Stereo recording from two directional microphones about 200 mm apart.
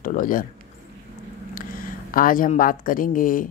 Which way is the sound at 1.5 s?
45° left (ahead or behind).